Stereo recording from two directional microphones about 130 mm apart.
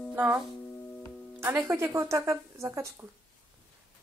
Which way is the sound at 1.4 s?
20° right (ahead or behind).